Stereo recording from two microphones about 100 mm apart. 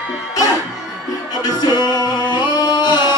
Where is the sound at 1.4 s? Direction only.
40° left (ahead or behind).